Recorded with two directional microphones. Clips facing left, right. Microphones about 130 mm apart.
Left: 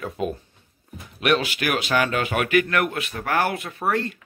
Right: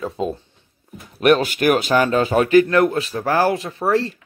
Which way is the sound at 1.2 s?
45° right (ahead or behind).